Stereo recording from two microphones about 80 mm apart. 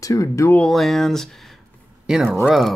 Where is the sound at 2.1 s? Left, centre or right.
Centre.